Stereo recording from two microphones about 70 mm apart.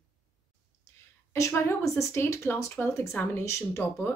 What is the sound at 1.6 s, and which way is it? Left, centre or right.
Speech, left.